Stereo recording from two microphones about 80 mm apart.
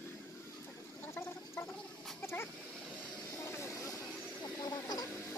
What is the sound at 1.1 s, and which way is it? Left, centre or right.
Gargling, left.